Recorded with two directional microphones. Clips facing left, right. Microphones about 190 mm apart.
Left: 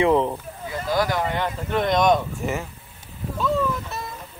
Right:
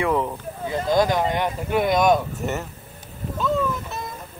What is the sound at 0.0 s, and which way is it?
Speech, 20° left (ahead or behind).